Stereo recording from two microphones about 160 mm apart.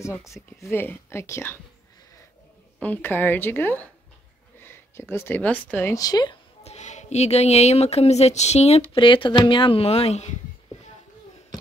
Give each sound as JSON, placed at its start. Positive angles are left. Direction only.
{"t": 0.0, "sound": "speech", "side_deg": 20}
{"t": 2.8, "sound": "speech", "side_deg": 10}
{"t": 6.6, "sound": "speech", "side_deg": 45}